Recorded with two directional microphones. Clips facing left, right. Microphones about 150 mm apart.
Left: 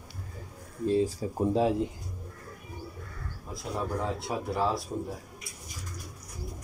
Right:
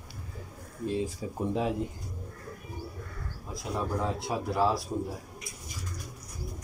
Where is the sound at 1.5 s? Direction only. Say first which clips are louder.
Left 4 dB; 30° left (ahead or behind).